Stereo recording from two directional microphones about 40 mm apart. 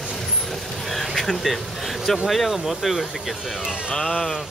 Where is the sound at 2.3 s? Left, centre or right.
Centre.